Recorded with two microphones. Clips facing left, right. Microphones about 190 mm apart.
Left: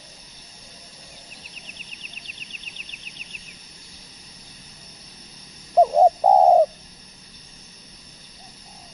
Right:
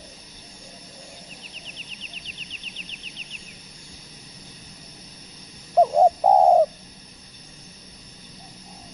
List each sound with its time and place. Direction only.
2.2 s vehicle: 55° left (ahead or behind)
5.8 s bird: 5° left (ahead or behind)